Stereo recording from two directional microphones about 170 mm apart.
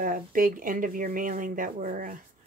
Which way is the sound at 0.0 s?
55° right (ahead or behind).